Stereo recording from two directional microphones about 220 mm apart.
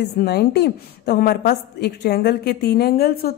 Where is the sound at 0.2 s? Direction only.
45° left (ahead or behind).